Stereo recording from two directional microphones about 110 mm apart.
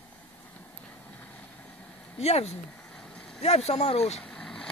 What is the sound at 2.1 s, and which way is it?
Speech, 70° left (ahead or behind).